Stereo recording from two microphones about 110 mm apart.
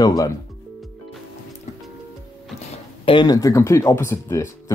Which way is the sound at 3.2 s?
35° left (ahead or behind).